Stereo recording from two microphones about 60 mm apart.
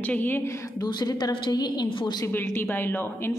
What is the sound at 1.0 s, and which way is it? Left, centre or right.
Speech, left.